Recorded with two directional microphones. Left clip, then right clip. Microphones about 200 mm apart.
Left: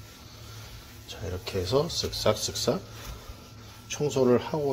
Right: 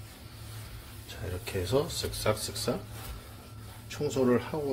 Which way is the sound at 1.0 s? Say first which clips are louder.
Left 3 dB; 10° left (ahead or behind).